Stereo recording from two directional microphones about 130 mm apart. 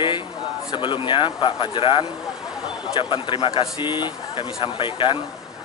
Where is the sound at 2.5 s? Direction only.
5° right (ahead or behind).